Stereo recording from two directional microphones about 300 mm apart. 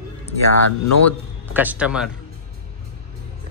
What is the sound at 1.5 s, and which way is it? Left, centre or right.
Speech, centre.